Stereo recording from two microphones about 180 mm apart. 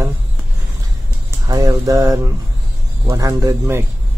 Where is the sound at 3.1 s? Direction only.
20° right (ahead or behind).